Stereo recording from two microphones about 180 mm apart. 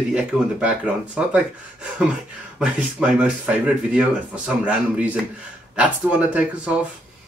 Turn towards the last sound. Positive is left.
turn(degrees=-5)  # may be behind; listen again after turning